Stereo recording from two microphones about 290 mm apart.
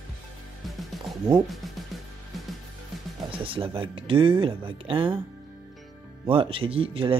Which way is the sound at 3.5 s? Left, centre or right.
Centre.